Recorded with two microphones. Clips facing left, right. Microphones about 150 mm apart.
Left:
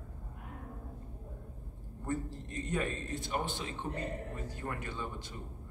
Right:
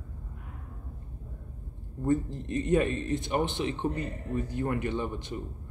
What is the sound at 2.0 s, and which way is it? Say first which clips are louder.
Speech: right 10 dB; 20° right (ahead or behind).